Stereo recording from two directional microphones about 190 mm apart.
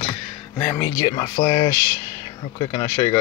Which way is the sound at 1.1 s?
25° left (ahead or behind).